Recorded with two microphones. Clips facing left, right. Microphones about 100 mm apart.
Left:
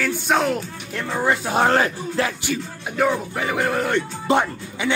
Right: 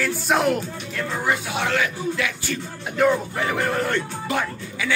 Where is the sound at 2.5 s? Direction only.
5° left (ahead or behind).